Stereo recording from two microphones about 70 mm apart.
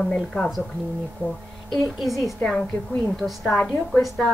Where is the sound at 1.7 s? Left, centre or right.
Centre.